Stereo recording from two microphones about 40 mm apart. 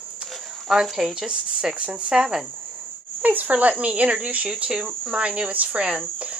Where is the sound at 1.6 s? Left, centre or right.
Right.